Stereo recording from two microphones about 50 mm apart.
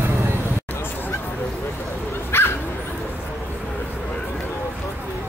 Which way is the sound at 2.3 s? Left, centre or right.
Left.